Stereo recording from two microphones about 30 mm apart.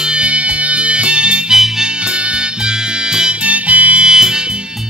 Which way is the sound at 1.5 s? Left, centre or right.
Right.